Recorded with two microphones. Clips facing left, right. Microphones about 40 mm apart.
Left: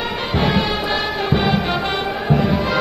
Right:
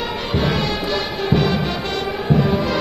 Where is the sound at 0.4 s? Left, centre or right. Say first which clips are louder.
Left 3 dB; centre.